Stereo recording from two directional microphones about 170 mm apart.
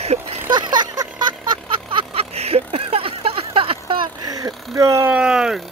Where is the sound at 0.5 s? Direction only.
25° right (ahead or behind).